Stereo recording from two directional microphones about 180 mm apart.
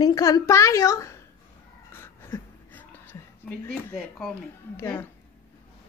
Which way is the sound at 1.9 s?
15° left (ahead or behind).